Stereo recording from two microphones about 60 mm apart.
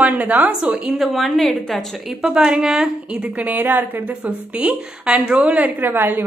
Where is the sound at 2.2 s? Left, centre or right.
Centre.